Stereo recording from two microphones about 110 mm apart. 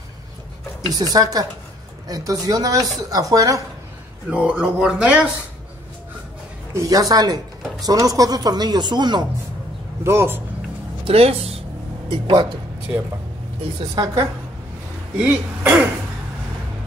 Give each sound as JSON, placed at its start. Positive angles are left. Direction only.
{"t": 0.8, "sound": "speech", "side_deg": -35}
{"t": 4.3, "sound": "speech", "side_deg": -10}
{"t": 6.7, "sound": "speech", "side_deg": -30}
{"t": 10.0, "sound": "speech", "side_deg": -20}
{"t": 11.1, "sound": "speech", "side_deg": -65}
{"t": 12.1, "sound": "speech", "side_deg": -45}
{"t": 13.9, "sound": "speech", "side_deg": -35}
{"t": 15.1, "sound": "speech", "side_deg": -10}